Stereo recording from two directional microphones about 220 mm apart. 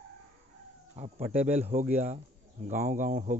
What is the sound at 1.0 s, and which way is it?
Speech, 30° right (ahead or behind).